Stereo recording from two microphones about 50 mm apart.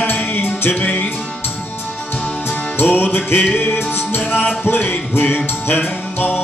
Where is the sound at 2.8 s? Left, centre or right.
Left.